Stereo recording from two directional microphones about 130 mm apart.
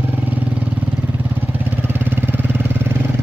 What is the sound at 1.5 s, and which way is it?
Vehicle, 15° right (ahead or behind).